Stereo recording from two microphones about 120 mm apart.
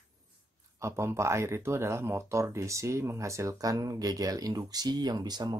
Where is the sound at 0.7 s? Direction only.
25° right (ahead or behind).